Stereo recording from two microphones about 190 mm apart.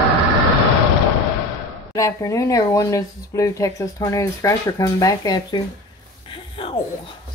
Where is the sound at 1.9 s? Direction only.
15° left (ahead or behind).